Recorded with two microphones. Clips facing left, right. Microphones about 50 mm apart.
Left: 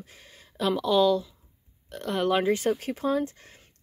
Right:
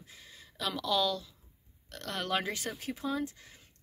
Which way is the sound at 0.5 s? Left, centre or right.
Left.